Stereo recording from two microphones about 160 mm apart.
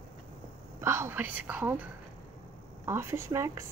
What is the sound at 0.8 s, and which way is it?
Speech, 15° right (ahead or behind).